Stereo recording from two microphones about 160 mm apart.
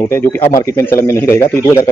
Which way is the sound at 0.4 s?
60° left (ahead or behind).